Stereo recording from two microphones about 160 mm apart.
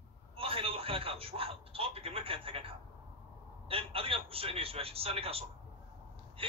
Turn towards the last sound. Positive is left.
turn(degrees=-35)  # may be behind; listen again after turning